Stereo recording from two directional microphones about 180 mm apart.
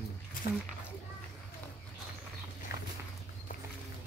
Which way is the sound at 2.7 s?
65° left (ahead or behind).